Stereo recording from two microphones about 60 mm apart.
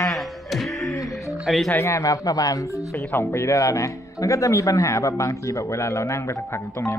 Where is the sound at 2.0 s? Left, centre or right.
Left.